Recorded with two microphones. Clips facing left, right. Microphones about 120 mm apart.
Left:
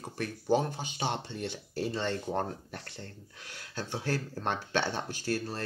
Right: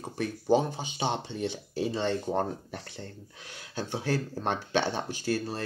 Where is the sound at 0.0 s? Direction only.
20° right (ahead or behind).